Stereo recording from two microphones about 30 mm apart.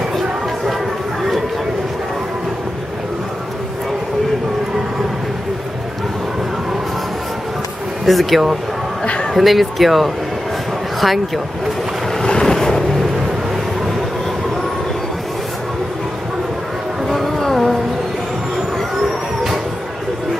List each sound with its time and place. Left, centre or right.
8.0 s speech: centre
9.0 s a man's voice: left
9.3 s speech: centre
12.2 s vehicle: left
17.1 s a sound: centre